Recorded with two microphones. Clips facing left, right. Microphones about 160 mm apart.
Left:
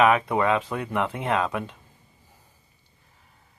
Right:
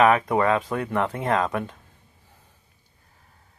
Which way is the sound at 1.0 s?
35° right (ahead or behind).